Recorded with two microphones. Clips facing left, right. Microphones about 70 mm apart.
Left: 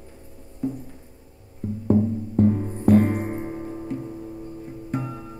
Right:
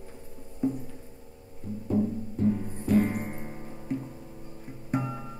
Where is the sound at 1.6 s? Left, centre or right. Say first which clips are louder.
Left 6 dB; left.